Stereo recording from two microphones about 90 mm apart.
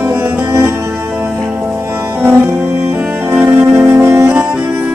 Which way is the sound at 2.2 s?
25° right (ahead or behind).